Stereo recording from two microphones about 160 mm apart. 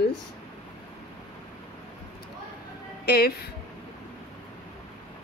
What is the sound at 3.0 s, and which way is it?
Speech, 75° left (ahead or behind).